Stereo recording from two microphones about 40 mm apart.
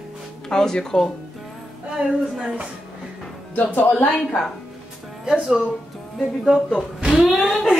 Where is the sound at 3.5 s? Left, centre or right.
Left.